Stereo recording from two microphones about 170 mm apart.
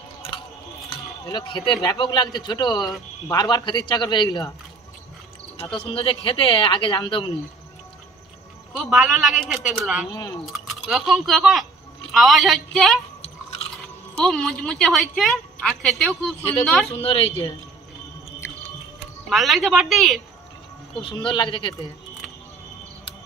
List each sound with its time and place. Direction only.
1.2 s a man's voice: 25° left (ahead or behind)
5.8 s speech: 30° left (ahead or behind)
8.7 s a woman's voice: centre (ahead or behind)
10.1 s a man's voice: 20° left (ahead or behind)
10.4 s a woman's voice: centre (ahead or behind)
14.2 s a woman's voice: 5° left (ahead or behind)
16.9 s speech: 35° left (ahead or behind)
19.2 s a woman's voice: centre (ahead or behind)
21.0 s a man's voice: 30° left (ahead or behind)